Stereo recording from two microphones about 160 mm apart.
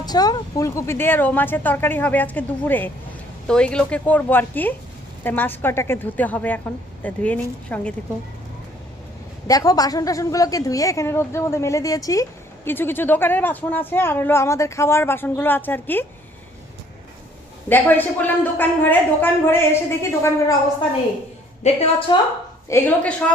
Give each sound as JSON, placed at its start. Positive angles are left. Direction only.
{"t": 0.0, "sound": "a woman's voice", "side_deg": 25}
{"t": 9.5, "sound": "a woman's voice", "side_deg": 20}
{"t": 17.6, "sound": "a woman's voice", "side_deg": 10}
{"t": 21.6, "sound": "a woman's voice", "side_deg": 35}
{"t": 22.7, "sound": "a woman's voice", "side_deg": 15}